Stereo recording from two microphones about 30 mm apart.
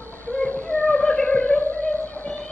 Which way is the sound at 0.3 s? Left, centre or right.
Left.